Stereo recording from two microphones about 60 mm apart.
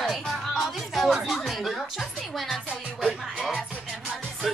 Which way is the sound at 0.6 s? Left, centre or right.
Centre.